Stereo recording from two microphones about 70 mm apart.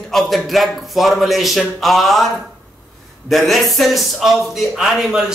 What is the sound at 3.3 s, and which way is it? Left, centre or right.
A man's voice, centre.